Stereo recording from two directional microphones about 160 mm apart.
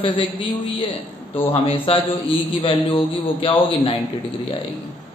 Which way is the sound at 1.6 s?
35° left (ahead or behind).